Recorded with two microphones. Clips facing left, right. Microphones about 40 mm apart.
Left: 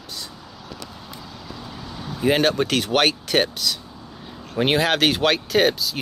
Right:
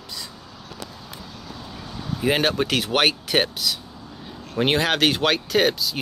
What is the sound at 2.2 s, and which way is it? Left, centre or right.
Speech, centre.